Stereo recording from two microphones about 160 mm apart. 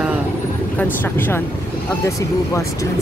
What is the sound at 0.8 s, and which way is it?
Speech, 10° left (ahead or behind).